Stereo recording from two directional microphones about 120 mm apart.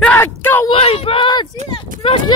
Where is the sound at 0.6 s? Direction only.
50° left (ahead or behind).